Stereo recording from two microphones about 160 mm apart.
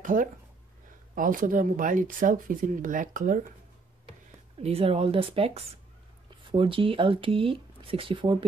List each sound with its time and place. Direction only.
0.0 s speech: 55° right (ahead or behind)
4.6 s speech: 40° right (ahead or behind)